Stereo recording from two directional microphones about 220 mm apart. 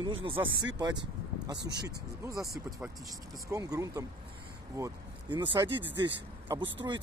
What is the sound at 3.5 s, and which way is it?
Speech, 15° right (ahead or behind).